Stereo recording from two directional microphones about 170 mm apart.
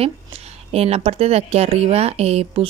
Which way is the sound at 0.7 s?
40° right (ahead or behind).